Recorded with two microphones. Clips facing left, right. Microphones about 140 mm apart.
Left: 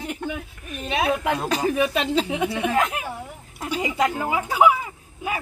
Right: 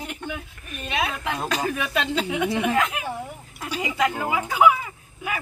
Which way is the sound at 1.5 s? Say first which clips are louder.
Left 2 dB; 10° left (ahead or behind).